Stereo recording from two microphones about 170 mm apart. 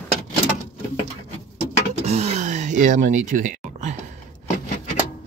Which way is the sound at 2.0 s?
40° right (ahead or behind).